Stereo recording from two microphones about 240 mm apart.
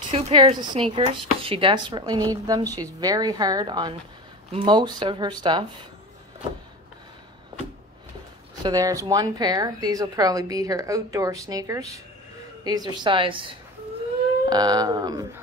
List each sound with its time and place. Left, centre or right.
0.1 s speech: right
8.6 s speech: centre